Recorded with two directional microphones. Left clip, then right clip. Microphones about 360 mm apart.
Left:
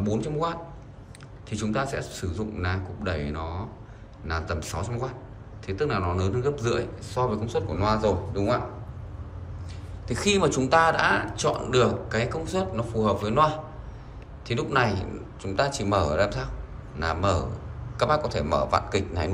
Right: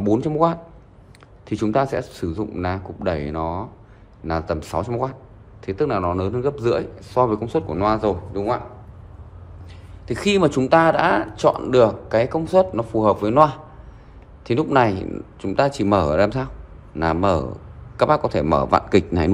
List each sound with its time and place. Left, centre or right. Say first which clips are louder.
0.0 s speech: right 9 dB; centre
10.0 s speech: right 5 dB; right